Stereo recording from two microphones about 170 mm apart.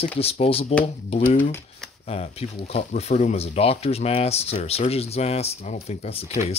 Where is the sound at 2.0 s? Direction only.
35° left (ahead or behind).